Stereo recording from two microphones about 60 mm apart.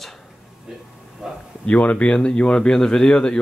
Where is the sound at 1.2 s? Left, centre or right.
Centre.